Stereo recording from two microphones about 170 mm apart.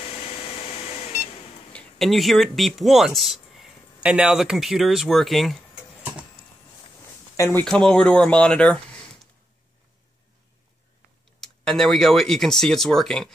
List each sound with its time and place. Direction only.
0.0 s beep: 35° left (ahead or behind)
1.7 s speech: 5° left (ahead or behind)
7.3 s speech: 20° left (ahead or behind)
7.6 s speech: 5° left (ahead or behind)
11.4 s speech: 5° left (ahead or behind)